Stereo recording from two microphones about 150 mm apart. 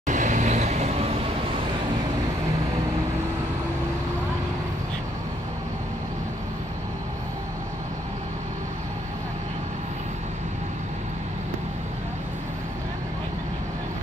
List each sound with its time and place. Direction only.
0.0 s vehicle: 55° right (ahead or behind)